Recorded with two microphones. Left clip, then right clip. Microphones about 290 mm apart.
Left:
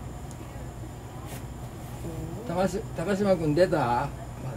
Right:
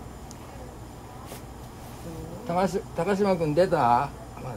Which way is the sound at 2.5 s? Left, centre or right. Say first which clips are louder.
Right 2 dB; right.